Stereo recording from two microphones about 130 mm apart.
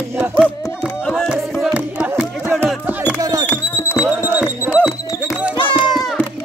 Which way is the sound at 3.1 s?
30° right (ahead or behind).